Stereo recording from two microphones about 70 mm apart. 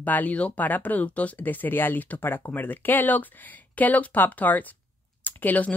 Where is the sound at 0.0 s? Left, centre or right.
Left.